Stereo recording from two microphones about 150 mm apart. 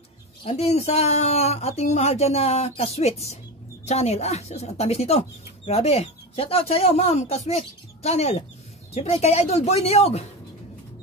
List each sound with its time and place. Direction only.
0.4 s speech: 45° left (ahead or behind)